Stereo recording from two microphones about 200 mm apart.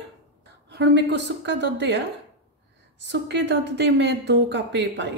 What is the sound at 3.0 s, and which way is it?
Speech, 60° right (ahead or behind).